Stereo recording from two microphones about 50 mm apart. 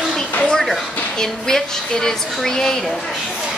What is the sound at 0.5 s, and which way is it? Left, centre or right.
Speech, centre.